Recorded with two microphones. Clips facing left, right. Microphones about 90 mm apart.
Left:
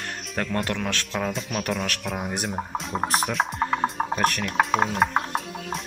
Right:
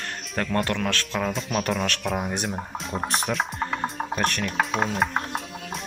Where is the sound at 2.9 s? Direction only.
Centre (ahead or behind).